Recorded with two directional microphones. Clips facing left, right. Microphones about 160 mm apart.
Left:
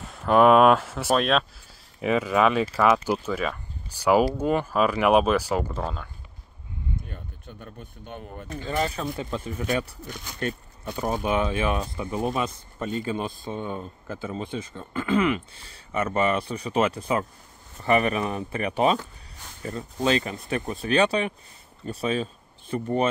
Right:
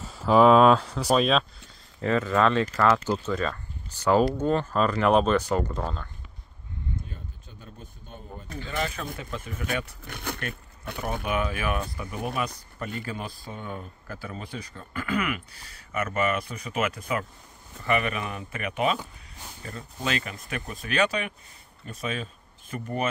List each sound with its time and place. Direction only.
0.0 s speech: centre (ahead or behind)
2.0 s speech: 10° left (ahead or behind)
7.1 s a sound: 60° left (ahead or behind)
8.6 s speech: 35° left (ahead or behind)
10.0 s speech: 60° right (ahead or behind)
11.0 s speech: 30° left (ahead or behind)